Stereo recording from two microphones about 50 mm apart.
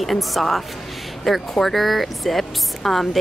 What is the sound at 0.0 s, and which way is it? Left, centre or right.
A woman's voice, centre.